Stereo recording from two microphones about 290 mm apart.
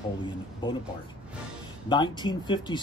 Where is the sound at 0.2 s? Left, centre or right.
Centre.